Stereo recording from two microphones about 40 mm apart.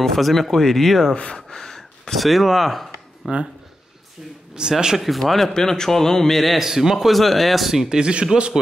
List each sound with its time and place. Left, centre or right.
0.0 s speech: centre
1.1 s speech: centre
2.9 s a sound: right
4.6 s speech: centre
5.2 s a man's voice: centre
6.6 s speech: centre
7.1 s speech: centre
8.0 s speech: right